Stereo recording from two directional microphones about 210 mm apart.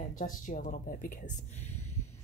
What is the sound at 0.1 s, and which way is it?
Speech, 40° left (ahead or behind).